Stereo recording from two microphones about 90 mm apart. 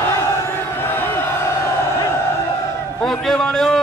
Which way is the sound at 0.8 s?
25° left (ahead or behind).